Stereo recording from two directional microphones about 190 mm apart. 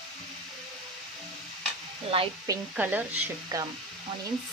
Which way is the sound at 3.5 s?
20° right (ahead or behind).